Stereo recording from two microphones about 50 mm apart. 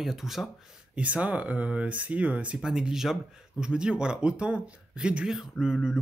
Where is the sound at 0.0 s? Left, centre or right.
Centre.